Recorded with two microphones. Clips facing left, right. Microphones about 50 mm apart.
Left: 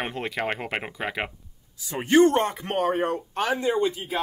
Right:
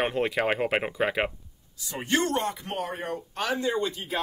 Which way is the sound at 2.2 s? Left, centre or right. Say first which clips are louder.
Left 6 dB; left.